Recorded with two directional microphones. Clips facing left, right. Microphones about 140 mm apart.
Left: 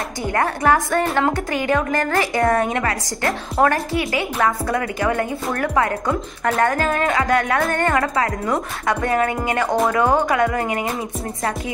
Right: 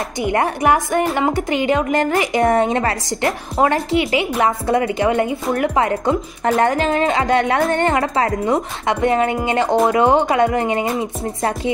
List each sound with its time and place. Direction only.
0.2 s a woman's voice: 20° right (ahead or behind)